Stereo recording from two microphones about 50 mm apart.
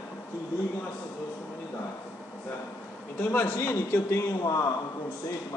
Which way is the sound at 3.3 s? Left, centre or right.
Left.